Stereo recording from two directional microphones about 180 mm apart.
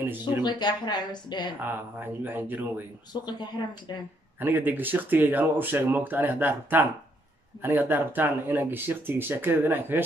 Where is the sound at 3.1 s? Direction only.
25° left (ahead or behind).